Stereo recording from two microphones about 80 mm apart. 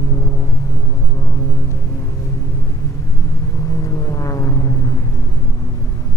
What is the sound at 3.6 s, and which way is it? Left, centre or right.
Vehicle, left.